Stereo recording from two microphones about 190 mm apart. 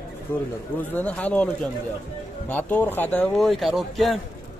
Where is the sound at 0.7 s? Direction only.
10° left (ahead or behind).